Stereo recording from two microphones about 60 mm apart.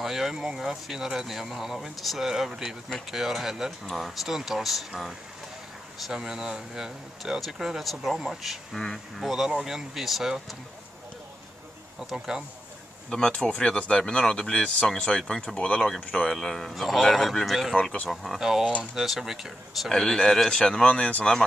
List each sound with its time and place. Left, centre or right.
0.0 s a man's voice: centre
8.7 s speech: centre
9.3 s speech: centre
12.0 s speech: centre
13.1 s speech: centre
16.3 s a man's voice: centre
18.4 s a man's voice: centre
19.9 s speech: centre